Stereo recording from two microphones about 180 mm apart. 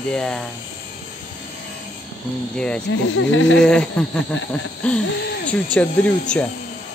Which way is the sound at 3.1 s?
90° left.